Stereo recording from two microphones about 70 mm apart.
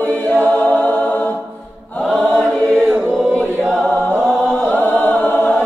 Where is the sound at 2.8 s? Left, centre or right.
Centre.